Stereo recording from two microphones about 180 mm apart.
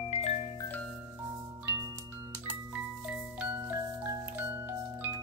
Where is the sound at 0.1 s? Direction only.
35° left (ahead or behind).